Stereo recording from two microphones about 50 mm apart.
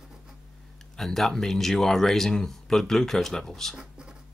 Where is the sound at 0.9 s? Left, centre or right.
Centre.